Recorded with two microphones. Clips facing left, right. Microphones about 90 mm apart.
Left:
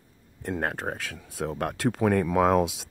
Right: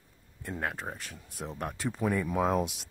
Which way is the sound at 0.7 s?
90° left.